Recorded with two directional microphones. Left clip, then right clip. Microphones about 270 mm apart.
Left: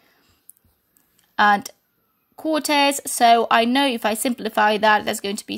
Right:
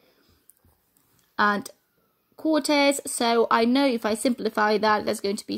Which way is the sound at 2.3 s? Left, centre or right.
Left.